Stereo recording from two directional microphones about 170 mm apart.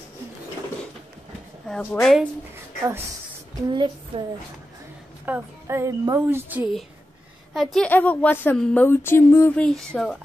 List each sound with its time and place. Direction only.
1.7 s a woman's voice: 10° left (ahead or behind)
3.7 s a woman's voice: 25° right (ahead or behind)
5.2 s a woman's voice: 10° right (ahead or behind)
7.5 s a woman's voice: centre (ahead or behind)
9.7 s a woman's voice: 5° left (ahead or behind)